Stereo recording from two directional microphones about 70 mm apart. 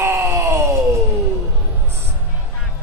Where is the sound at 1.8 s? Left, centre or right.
Right.